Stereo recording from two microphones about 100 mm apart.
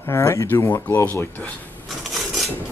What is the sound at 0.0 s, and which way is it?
Speech, 30° left (ahead or behind).